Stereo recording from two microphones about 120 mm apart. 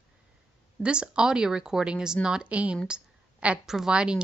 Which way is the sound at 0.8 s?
10° right (ahead or behind).